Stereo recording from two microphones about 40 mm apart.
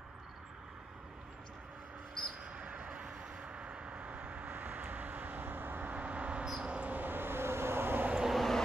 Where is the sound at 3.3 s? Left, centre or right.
Right.